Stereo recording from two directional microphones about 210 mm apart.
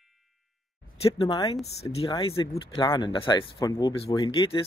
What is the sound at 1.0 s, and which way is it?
Speech, 20° left (ahead or behind).